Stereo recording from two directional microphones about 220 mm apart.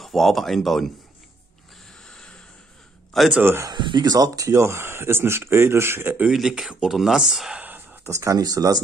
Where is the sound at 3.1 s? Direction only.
5° right (ahead or behind).